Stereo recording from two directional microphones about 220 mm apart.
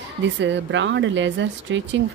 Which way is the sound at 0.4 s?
55° right (ahead or behind).